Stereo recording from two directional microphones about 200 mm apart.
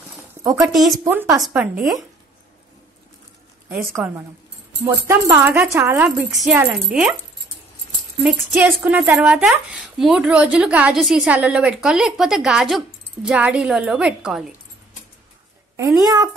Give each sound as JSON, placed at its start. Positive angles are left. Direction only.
{"t": 0.3, "sound": "a sound", "side_deg": -15}
{"t": 0.7, "sound": "speech", "side_deg": 0}
{"t": 1.0, "sound": "speech", "side_deg": -10}
{"t": 4.8, "sound": "speech", "side_deg": -10}
{"t": 8.2, "sound": "speech", "side_deg": -5}
{"t": 15.7, "sound": "a woman's voice", "side_deg": -15}